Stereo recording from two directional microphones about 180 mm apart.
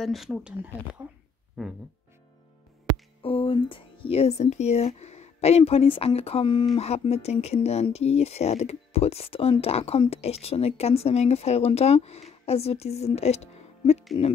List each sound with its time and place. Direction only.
0.0 s speech: centre (ahead or behind)
3.2 s speech: 30° left (ahead or behind)